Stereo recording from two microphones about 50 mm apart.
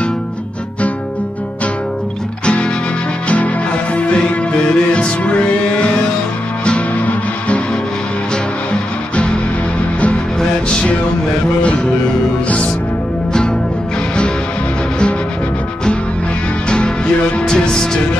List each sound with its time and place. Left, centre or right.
3.9 s music: left
8.7 s music: centre
11.6 s music: left
16.6 s music: centre